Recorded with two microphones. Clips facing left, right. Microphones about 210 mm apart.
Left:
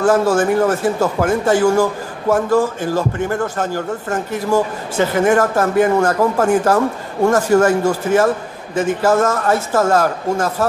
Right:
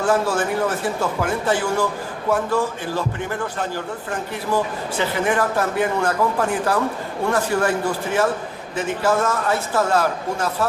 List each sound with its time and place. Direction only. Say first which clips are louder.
0.0 s a man's voice: left 6 dB; 45° left (ahead or behind)